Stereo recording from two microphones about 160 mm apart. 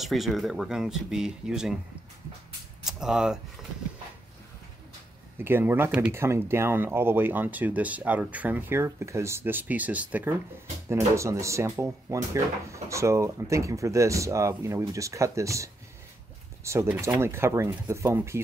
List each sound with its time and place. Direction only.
0.0 s speech: centre (ahead or behind)
2.8 s speech: 5° right (ahead or behind)
5.4 s speech: 15° right (ahead or behind)